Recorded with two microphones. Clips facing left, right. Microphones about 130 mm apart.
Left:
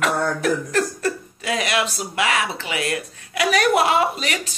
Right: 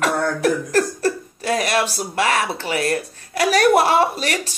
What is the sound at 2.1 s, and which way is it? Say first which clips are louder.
Speech: right 2 dB; 40° right (ahead or behind).